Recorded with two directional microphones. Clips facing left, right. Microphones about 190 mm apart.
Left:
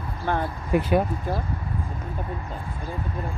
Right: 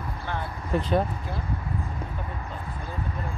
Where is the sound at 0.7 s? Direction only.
15° left (ahead or behind).